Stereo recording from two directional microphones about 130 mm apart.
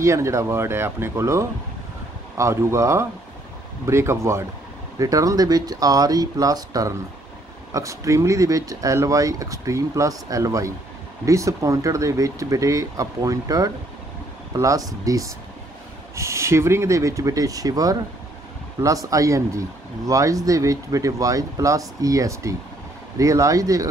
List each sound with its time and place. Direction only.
0.0 s speech: 25° right (ahead or behind)